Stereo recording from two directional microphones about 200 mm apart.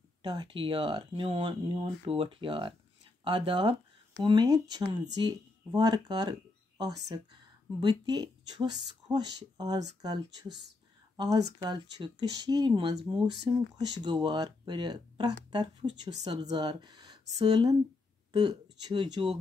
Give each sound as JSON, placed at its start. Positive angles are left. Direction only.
{"t": 0.2, "sound": "speech", "side_deg": -20}